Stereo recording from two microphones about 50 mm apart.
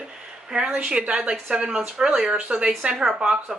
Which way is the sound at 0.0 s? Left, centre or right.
Centre.